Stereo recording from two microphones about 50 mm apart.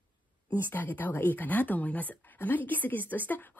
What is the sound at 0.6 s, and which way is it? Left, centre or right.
A woman's voice, left.